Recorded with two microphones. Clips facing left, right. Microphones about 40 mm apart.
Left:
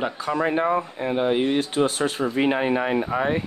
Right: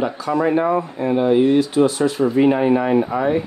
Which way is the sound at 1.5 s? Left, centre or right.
Left.